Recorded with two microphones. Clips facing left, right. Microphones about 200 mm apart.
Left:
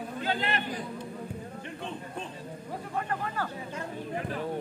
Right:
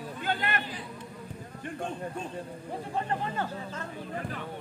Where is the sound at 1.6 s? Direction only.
50° right (ahead or behind).